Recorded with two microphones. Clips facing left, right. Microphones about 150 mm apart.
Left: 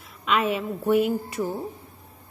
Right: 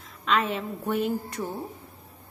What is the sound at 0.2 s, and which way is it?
A woman's voice, 10° left (ahead or behind).